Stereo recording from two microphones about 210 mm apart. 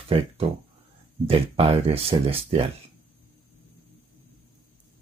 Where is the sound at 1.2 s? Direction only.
30° right (ahead or behind).